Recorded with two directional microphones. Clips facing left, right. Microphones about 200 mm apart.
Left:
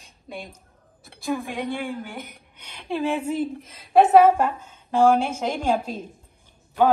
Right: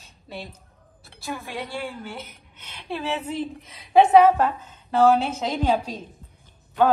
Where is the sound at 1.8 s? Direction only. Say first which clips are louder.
Left 3 dB; 50° left (ahead or behind).